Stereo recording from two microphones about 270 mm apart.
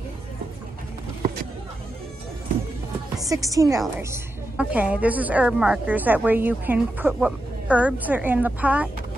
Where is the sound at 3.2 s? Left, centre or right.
Centre.